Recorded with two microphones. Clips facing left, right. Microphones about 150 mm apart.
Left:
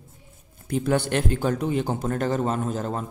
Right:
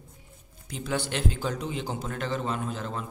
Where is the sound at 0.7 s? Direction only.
55° left (ahead or behind).